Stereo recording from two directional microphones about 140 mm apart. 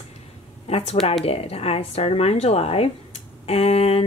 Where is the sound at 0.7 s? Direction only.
45° left (ahead or behind).